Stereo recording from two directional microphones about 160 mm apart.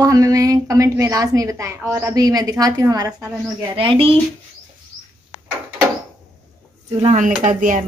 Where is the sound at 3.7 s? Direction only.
35° right (ahead or behind).